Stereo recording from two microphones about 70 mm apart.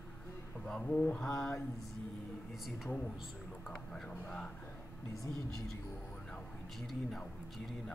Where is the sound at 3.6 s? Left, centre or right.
Centre.